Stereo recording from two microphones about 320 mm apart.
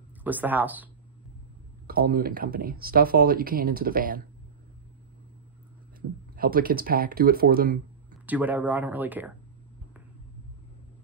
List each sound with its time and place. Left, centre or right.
0.2 s speech: centre
1.9 s speech: right
5.9 s speech: right
8.3 s speech: centre